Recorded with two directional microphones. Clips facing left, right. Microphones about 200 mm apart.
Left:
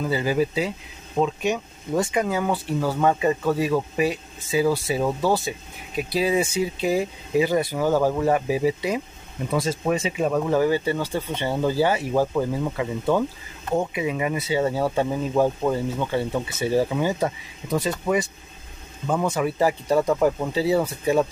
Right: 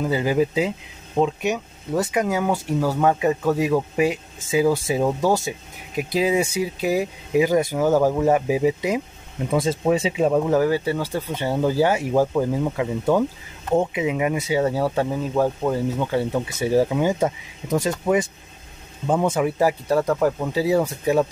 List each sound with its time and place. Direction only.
0.0 s speech: 15° right (ahead or behind)
1.4 s speech: 5° right (ahead or behind); by 10.4 s 25° right (ahead or behind)
10.4 s speech: 5° right (ahead or behind)
19.4 s speech: 5° right (ahead or behind)
20.5 s speech: 10° right (ahead or behind)